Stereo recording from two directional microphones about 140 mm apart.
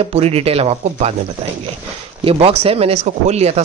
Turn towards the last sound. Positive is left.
turn(degrees=-50)  # may be behind; listen again after turning